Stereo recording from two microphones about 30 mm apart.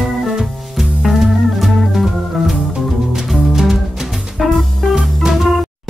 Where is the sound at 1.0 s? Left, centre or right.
Centre.